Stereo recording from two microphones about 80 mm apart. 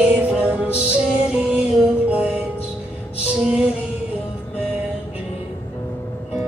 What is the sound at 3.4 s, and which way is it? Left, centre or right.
Music, centre.